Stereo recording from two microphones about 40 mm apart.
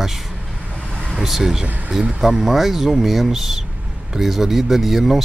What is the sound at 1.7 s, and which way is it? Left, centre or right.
Speech, right.